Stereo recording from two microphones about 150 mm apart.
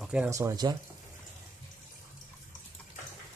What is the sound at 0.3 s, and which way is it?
Speech, 20° right (ahead or behind).